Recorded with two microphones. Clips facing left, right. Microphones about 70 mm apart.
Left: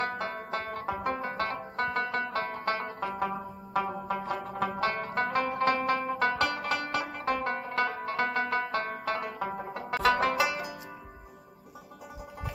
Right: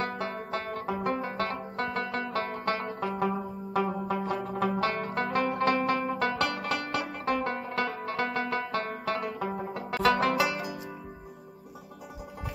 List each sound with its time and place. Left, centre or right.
0.0 s banjo: centre
2.8 s music: centre
3.8 s zither: centre
4.6 s music: left
5.7 s zither: centre
6.4 s music: centre
7.8 s banjo: centre
9.8 s music: centre